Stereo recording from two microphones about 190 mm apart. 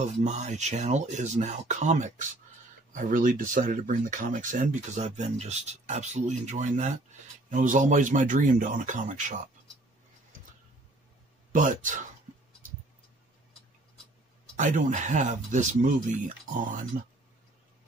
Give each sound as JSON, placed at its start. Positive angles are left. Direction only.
{"t": 0.0, "sound": "speech", "side_deg": -35}
{"t": 11.5, "sound": "speech", "side_deg": -45}
{"t": 14.6, "sound": "speech", "side_deg": -45}